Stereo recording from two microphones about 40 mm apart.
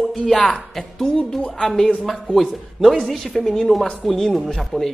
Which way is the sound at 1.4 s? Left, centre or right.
Centre.